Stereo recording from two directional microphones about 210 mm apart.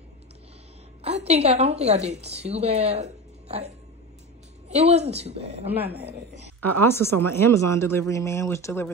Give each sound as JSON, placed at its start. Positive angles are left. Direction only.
{"t": 1.0, "sound": "a woman's voice", "side_deg": -30}
{"t": 5.9, "sound": "speech", "side_deg": -50}
{"t": 6.6, "sound": "speech", "side_deg": 10}